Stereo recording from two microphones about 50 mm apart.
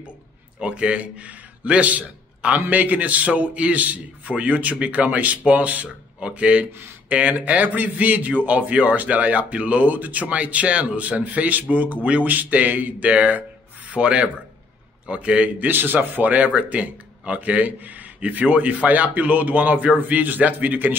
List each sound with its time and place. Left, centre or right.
0.6 s a man's voice: right
15.6 s a man's voice: right